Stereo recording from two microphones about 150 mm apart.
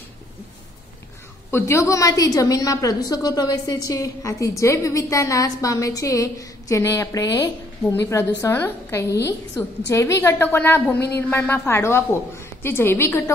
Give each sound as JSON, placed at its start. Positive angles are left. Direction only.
{"t": 1.5, "sound": "a woman's voice", "side_deg": 20}